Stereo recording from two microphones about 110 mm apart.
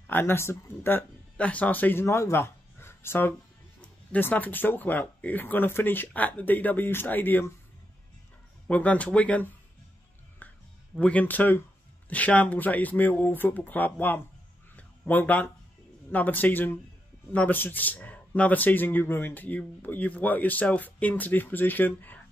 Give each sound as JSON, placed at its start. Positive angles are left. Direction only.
{"t": 0.0, "sound": "speech", "side_deg": 20}
{"t": 8.6, "sound": "speech", "side_deg": 10}
{"t": 10.4, "sound": "a sound", "side_deg": 15}
{"t": 11.0, "sound": "speech", "side_deg": 10}
{"t": 14.8, "sound": "a sound", "side_deg": 15}
{"t": 16.1, "sound": "speech", "side_deg": 15}